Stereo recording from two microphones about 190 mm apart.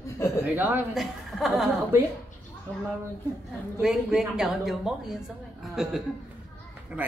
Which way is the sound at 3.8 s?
Centre (ahead or behind).